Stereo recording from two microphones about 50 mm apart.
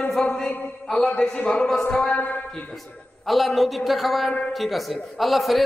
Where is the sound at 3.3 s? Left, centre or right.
Centre.